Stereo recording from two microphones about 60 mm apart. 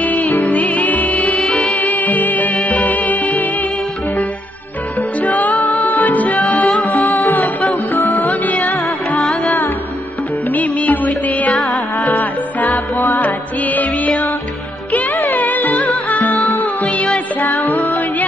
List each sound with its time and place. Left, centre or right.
0.0 s music: left
1.4 s music: centre
1.8 s music: left
2.5 s music: centre
5.5 s music: centre
5.9 s music: left
6.3 s music: centre
7.1 s music: left
8.7 s music: centre
10.5 s music: left
11.5 s music: centre
12.2 s music: left
15.4 s music: left
15.7 s music: centre